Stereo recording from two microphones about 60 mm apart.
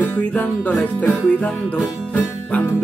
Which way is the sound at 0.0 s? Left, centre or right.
Left.